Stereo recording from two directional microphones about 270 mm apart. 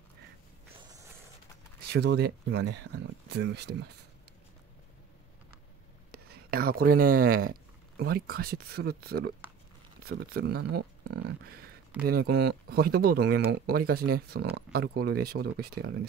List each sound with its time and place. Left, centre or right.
1.9 s speech: right
6.1 s speech: right